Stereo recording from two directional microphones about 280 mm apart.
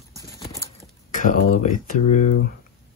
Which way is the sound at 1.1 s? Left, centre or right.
Left.